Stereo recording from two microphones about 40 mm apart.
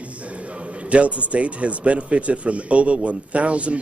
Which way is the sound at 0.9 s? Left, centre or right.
Right.